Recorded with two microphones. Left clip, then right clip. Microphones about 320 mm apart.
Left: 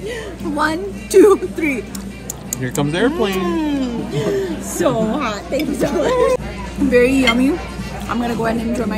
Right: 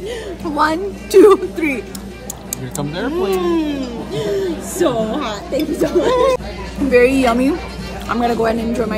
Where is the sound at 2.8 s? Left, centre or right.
Centre.